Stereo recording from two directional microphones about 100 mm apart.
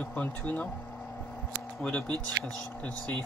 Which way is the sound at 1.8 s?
10° left (ahead or behind).